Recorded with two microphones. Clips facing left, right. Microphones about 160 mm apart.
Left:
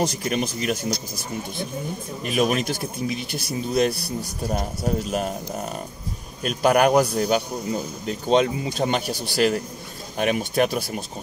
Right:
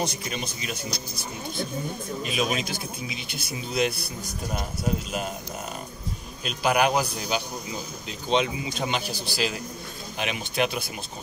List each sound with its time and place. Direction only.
0.0 s speech: 50° left (ahead or behind)
2.2 s a man's voice: 50° left (ahead or behind)
6.4 s a man's voice: 45° left (ahead or behind)